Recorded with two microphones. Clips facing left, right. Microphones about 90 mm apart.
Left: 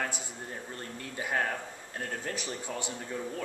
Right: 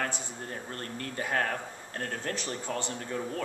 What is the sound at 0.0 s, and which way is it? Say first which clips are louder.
A man's voice: right 2 dB; 10° left (ahead or behind).